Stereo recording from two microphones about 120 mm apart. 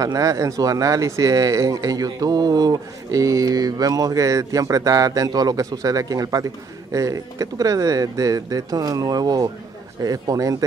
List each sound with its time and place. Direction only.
0.0 s speech: 30° right (ahead or behind)